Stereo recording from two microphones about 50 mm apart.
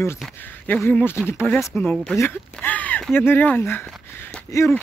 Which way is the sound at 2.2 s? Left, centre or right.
Left.